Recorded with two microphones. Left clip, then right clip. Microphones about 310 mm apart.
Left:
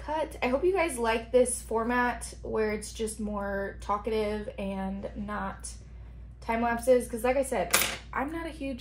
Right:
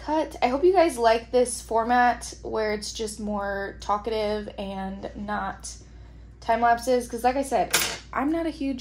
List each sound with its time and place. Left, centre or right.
0.0 s speech: right
6.4 s speech: right